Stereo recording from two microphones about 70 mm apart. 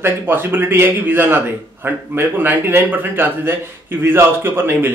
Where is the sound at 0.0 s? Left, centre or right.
Right.